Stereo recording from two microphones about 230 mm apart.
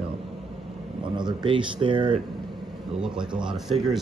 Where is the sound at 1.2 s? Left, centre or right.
Centre.